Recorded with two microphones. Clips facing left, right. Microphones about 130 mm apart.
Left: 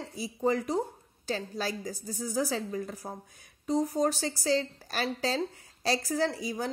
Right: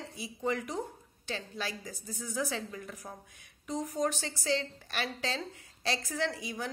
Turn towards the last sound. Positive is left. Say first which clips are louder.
# left 5 dB
turn(degrees=35)  # may be behind; listen again after turning